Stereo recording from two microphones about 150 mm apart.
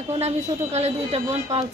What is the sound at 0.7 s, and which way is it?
Speech, 45° right (ahead or behind).